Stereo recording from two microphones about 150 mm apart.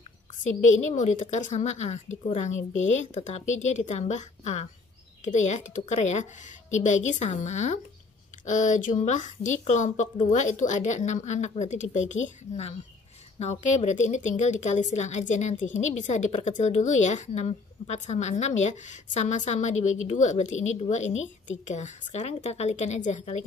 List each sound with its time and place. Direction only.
0.4 s a woman's voice: 50° left (ahead or behind)